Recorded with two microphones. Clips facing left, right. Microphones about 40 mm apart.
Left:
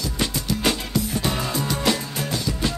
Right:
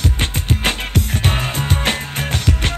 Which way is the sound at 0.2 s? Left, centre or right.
Right.